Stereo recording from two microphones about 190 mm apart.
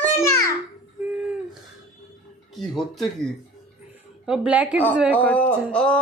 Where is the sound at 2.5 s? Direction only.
Centre (ahead or behind).